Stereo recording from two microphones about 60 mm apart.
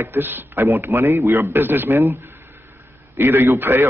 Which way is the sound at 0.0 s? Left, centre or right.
Right.